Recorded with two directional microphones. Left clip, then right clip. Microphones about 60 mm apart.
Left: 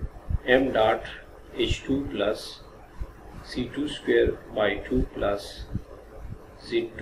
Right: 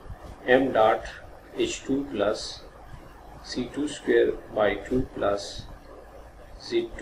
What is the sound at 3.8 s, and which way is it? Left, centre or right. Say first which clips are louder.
Speech: even; centre.